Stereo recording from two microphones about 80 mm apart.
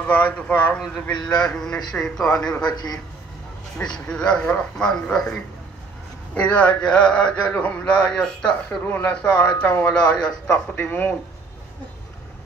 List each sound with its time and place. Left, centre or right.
0.0 s speech: centre
0.7 s a man's voice: centre
1.2 s a man's voice: centre
2.7 s a man's voice: left
4.1 s a man's voice: centre